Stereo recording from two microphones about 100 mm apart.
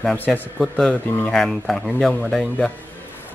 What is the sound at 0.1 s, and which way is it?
Speech, 15° left (ahead or behind).